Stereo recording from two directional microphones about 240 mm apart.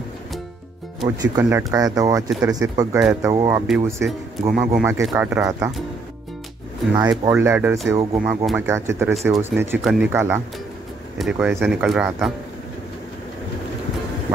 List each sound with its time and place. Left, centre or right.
1.0 s speech: centre
7.0 s speech: centre